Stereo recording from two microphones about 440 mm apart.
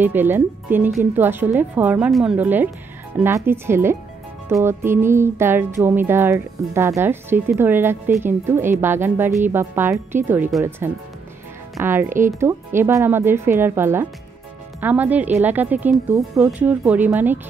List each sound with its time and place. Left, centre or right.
0.0 s music: centre